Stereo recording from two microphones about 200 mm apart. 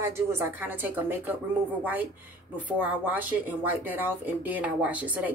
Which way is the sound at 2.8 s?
10° right (ahead or behind).